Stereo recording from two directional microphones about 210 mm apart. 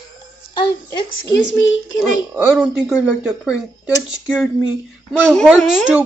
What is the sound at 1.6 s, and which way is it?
Speech, 65° left (ahead or behind).